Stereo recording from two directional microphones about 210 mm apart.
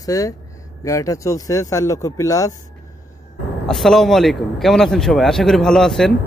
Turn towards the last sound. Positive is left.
turn(degrees=0)  # may be behind; listen again after turning